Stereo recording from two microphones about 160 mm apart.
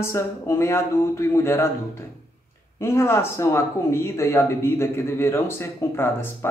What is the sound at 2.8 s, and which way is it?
Speech, 15° left (ahead or behind).